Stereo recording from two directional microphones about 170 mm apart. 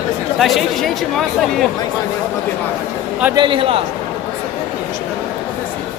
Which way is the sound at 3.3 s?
30° right (ahead or behind).